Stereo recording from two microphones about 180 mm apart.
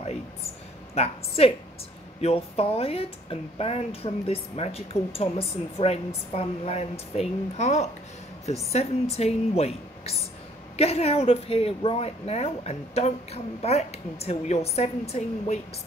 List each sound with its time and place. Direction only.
0.9 s speech: 35° left (ahead or behind)